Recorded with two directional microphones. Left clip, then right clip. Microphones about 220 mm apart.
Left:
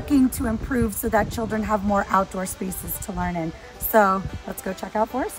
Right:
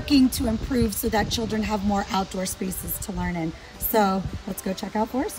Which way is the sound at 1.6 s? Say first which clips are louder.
Left 4 dB; centre (ahead or behind).